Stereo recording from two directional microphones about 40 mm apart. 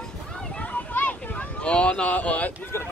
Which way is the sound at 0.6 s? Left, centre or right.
Left.